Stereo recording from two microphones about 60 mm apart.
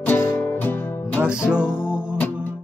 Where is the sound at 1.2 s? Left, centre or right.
Centre.